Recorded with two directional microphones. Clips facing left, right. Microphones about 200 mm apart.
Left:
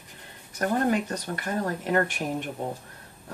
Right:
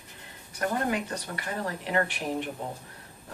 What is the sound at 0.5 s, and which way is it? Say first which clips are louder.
Speech: left 4 dB; 40° left (ahead or behind).